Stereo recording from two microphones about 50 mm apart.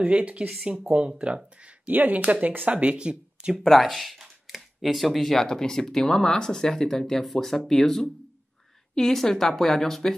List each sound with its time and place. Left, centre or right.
0.0 s speech: right
2.0 s speech: right; by 3.5 s centre
3.5 s speech: centre